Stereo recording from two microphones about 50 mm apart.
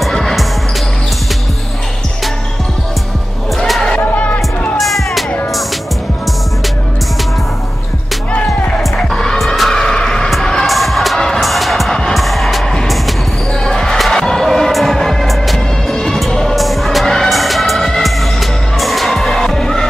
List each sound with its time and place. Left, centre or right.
0.0 s music: centre
3.5 s a sound: centre
3.9 s music: left
4.7 s music: centre
9.1 s music: centre
10.7 s music: centre
11.9 s music: centre
12.2 s music: centre
13.5 s basketball bounce: centre